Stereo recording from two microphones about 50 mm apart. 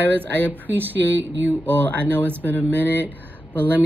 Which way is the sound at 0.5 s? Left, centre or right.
Right.